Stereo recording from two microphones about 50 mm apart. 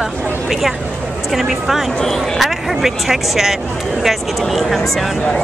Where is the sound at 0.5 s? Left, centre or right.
Centre.